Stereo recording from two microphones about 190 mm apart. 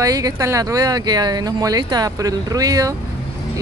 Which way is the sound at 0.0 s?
20° right (ahead or behind).